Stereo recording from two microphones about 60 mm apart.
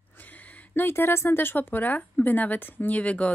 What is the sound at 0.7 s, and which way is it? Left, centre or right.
Speech, left.